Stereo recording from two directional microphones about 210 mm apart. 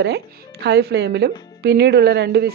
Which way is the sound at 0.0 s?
55° right (ahead or behind).